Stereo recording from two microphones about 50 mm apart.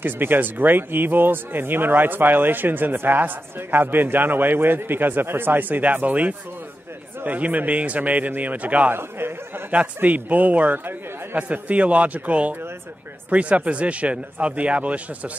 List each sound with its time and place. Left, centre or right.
0.0 s speech: right
10.0 s speech: right